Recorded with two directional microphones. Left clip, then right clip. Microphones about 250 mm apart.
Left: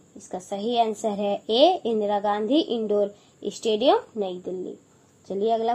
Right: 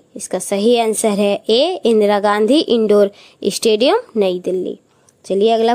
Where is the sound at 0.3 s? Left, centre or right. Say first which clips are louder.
Right 13 dB; right.